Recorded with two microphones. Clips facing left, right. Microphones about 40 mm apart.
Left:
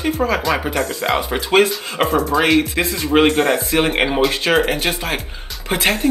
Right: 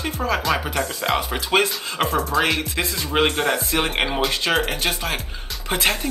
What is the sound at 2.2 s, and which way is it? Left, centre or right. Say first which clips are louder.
Speech: left 7 dB; centre.